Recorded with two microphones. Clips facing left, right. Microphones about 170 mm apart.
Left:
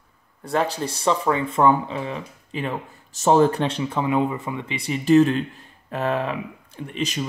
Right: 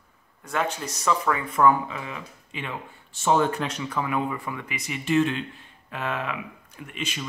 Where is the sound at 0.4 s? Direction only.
35° left (ahead or behind).